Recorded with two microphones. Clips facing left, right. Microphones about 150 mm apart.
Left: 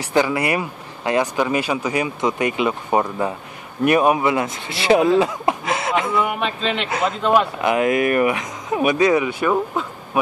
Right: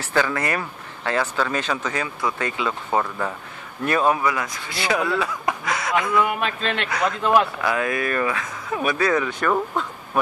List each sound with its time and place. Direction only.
0.0 s speech: 15° left (ahead or behind)
6.2 s a man's voice: 5° left (ahead or behind)
6.9 s speech: 25° left (ahead or behind); by 9.8 s 5° left (ahead or behind)